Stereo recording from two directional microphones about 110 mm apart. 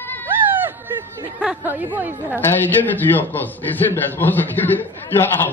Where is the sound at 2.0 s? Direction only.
15° right (ahead or behind).